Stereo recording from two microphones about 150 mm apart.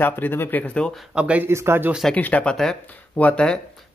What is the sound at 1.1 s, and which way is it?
Speech, 10° right (ahead or behind).